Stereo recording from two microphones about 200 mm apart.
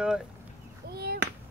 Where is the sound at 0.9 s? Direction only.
50° right (ahead or behind).